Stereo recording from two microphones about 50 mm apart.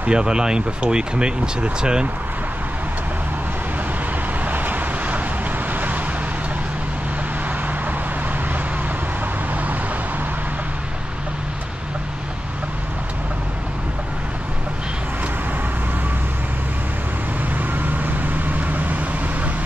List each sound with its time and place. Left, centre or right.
0.0 s speech: centre
4.5 s vehicle: right
17.6 s vehicle: right